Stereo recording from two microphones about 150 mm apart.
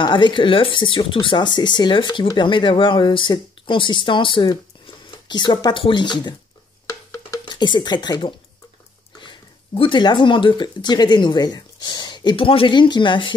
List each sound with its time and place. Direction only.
0.0 s speech: 30° left (ahead or behind)
6.9 s stir: 25° left (ahead or behind)
9.2 s speech: 35° left (ahead or behind)